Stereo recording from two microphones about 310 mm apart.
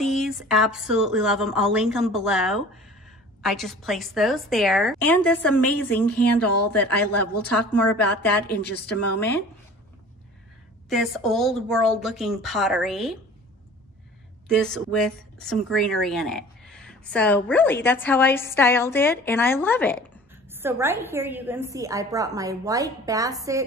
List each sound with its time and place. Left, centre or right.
0.0 s speech: centre
6.4 s a woman's voice: left
7.7 s speech: centre
10.9 s speech: centre
14.5 s speech: centre
20.5 s a woman's voice: centre